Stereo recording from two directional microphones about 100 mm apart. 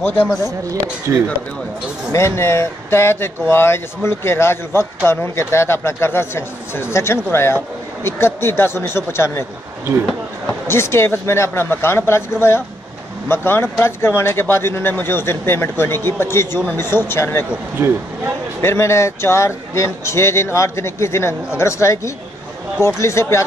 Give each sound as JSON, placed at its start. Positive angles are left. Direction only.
{"t": 0.0, "sound": "speech", "side_deg": 15}
{"t": 2.1, "sound": "speech", "side_deg": 25}
{"t": 10.7, "sound": "speech", "side_deg": 25}
{"t": 17.7, "sound": "speech", "side_deg": -25}
{"t": 18.6, "sound": "speech", "side_deg": 25}